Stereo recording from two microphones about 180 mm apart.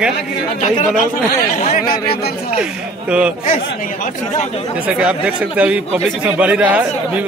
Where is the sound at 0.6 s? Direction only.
40° left (ahead or behind); by 2.3 s 55° left (ahead or behind).